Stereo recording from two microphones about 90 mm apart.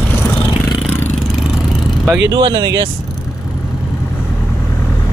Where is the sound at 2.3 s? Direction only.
50° right (ahead or behind).